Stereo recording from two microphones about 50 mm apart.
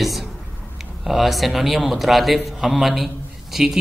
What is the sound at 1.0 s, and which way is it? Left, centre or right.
Speech, centre.